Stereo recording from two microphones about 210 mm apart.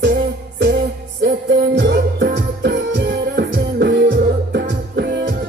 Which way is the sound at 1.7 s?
55° right (ahead or behind).